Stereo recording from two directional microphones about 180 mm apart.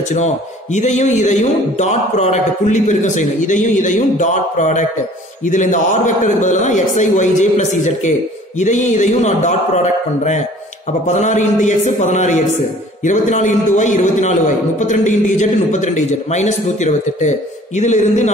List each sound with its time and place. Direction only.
0.1 s a man's voice: 40° left (ahead or behind)